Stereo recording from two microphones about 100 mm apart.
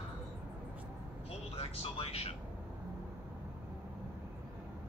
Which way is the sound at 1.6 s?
70° left (ahead or behind).